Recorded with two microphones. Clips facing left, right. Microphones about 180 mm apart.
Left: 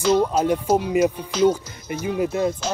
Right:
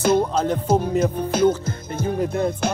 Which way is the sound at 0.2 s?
10° left (ahead or behind).